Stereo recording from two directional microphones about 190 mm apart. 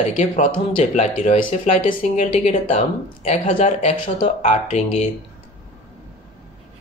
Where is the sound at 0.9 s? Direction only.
35° left (ahead or behind).